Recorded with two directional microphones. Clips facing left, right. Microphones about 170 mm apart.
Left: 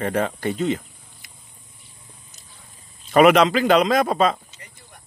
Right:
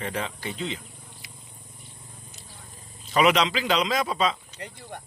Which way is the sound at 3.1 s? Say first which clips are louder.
Left 7 dB; 55° left (ahead or behind).